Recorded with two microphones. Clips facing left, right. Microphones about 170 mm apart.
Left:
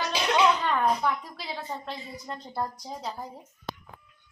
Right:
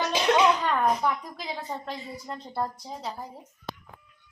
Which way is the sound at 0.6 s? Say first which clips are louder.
Right 1 dB; 5° right (ahead or behind).